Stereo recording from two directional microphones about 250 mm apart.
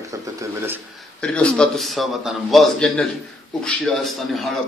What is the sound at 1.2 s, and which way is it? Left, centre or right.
A man's voice, centre.